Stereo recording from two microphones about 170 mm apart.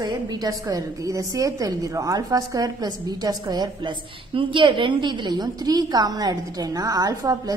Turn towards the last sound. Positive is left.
turn(degrees=-20)  # may be behind; listen again after turning